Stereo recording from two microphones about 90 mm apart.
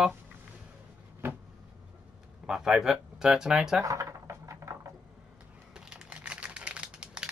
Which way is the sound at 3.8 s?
35° right (ahead or behind).